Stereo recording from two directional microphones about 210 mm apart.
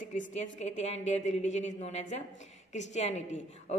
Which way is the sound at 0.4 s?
35° left (ahead or behind).